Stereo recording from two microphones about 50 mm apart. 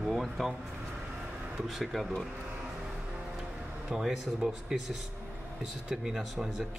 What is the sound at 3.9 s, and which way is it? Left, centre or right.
Speech, centre.